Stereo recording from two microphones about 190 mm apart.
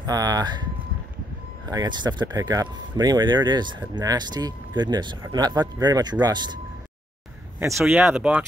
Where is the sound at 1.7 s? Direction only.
20° right (ahead or behind).